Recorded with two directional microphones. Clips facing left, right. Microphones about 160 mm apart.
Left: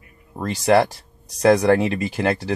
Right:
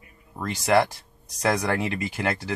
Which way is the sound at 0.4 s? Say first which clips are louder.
Left 4 dB; 35° left (ahead or behind).